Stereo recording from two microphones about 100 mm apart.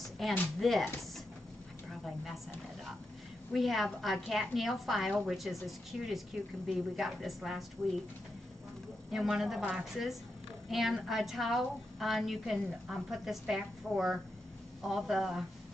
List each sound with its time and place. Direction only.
0.2 s a woman's voice: centre (ahead or behind)
3.5 s a woman's voice: centre (ahead or behind)
9.1 s a woman's voice: 5° right (ahead or behind)